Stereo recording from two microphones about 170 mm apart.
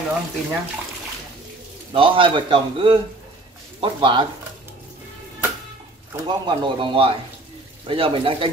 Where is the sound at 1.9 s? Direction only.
30° right (ahead or behind).